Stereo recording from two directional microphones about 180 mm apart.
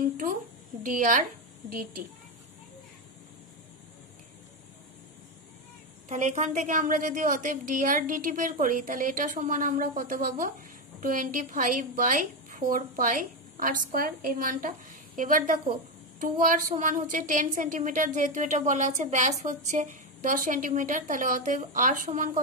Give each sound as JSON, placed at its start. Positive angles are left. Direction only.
{"t": 0.8, "sound": "a woman's voice", "side_deg": -50}
{"t": 6.0, "sound": "a woman's voice", "side_deg": -40}